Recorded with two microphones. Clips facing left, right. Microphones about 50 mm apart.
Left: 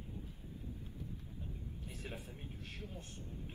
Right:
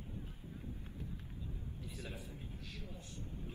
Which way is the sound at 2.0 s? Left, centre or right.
Left.